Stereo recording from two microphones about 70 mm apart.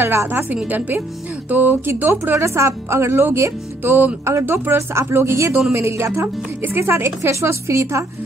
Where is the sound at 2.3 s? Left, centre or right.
Right.